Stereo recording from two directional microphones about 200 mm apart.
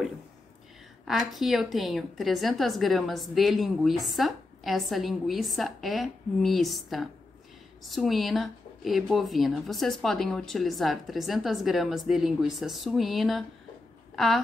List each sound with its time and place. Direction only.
1.0 s a woman's voice: centre (ahead or behind)